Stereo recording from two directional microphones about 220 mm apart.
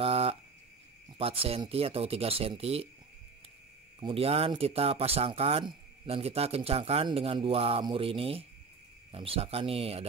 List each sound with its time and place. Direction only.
0.0 s a sound: 25° right (ahead or behind)
1.1 s speech: 25° right (ahead or behind)
4.0 s speech: 25° right (ahead or behind)